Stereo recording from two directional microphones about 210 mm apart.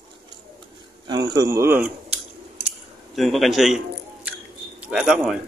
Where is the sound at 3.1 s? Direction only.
Centre (ahead or behind).